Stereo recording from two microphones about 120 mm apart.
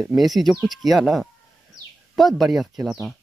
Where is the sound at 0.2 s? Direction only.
Centre (ahead or behind).